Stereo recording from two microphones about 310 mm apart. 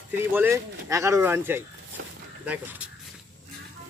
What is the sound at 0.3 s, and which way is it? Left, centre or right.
Speech, centre.